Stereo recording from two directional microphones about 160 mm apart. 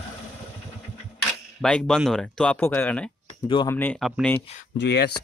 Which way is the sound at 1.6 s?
5° left (ahead or behind).